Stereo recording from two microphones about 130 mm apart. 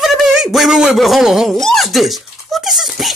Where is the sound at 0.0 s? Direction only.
Centre (ahead or behind).